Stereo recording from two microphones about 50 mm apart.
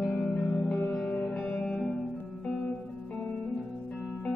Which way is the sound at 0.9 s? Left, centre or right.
Centre.